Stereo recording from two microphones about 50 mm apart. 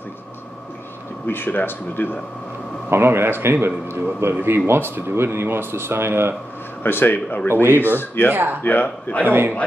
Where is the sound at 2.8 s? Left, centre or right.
Right.